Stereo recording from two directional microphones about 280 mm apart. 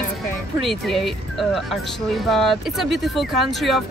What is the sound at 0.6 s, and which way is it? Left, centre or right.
Speech, centre.